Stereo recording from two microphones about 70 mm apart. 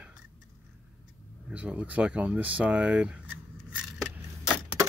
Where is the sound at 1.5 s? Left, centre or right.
Centre.